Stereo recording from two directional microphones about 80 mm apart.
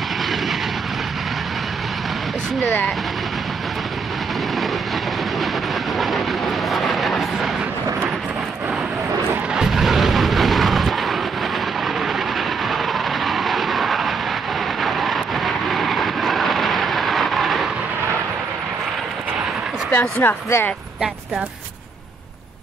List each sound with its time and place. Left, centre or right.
5.9 s vehicle: centre
9.5 s a sound: centre
12.4 s vehicle: centre
19.9 s speech: left